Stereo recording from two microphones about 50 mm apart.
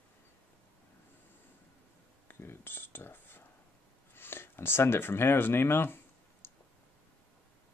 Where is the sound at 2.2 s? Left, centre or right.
Left.